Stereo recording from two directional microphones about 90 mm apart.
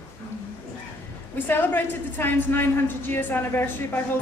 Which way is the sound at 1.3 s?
20° left (ahead or behind).